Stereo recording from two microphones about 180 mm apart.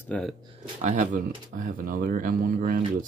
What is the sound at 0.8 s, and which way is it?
Speech, 45° right (ahead or behind).